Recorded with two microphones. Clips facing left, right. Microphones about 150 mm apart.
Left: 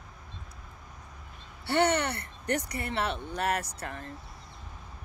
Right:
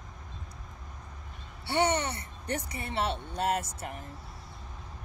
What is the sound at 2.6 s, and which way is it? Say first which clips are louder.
Speech: even; 25° right (ahead or behind).